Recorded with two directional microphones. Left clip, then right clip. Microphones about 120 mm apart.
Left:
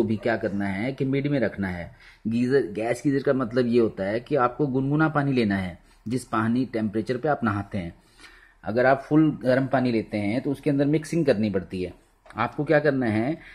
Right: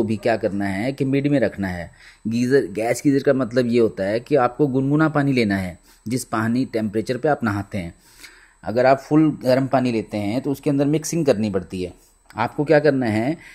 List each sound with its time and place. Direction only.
0.0 s speech: 45° right (ahead or behind)